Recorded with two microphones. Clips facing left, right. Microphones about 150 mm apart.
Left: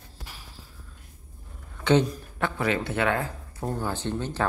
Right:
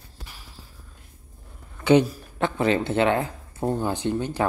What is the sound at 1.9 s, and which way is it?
Speech, 10° right (ahead or behind).